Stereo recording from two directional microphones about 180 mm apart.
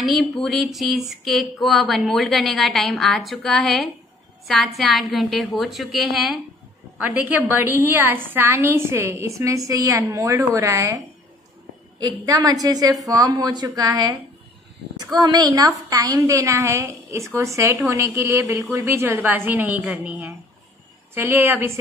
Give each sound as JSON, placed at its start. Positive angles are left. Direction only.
{"t": 0.0, "sound": "a sound", "side_deg": 0}
{"t": 7.0, "sound": "a woman's voice", "side_deg": -10}
{"t": 12.0, "sound": "a woman's voice", "side_deg": -20}
{"t": 15.1, "sound": "a woman's voice", "side_deg": -20}